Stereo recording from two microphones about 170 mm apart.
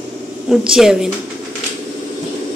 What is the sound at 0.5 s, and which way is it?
Speech, 5° right (ahead or behind).